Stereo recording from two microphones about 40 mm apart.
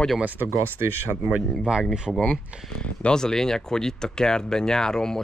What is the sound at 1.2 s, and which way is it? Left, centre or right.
Speech, right.